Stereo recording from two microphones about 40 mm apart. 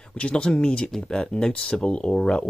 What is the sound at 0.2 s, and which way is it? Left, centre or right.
Speech, left.